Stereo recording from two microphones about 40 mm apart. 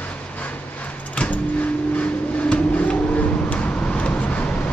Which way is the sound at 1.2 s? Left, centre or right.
Left.